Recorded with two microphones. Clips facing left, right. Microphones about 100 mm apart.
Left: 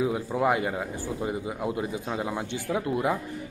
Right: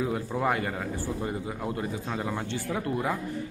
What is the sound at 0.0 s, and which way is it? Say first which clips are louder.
A man's voice: left 3 dB; 15° left (ahead or behind).